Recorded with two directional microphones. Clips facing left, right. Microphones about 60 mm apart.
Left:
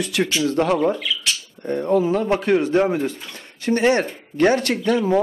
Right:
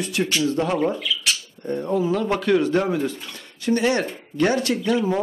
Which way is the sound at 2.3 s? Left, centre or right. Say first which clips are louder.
Left 2 dB; left.